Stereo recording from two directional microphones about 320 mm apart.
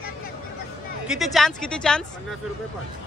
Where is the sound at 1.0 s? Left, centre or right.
Centre.